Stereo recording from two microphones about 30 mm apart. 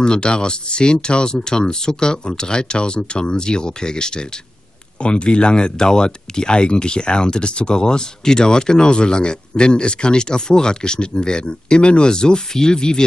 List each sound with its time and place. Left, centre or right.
0.0 s speech: left
5.0 s speech: left